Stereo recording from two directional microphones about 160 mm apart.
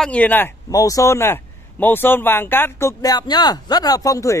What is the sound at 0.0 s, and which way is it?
A man's voice, 10° left (ahead or behind).